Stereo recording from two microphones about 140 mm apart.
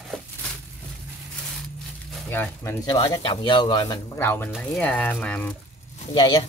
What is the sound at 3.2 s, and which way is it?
Speech, 35° left (ahead or behind).